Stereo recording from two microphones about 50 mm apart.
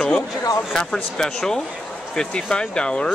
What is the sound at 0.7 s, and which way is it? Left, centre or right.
Speech, centre.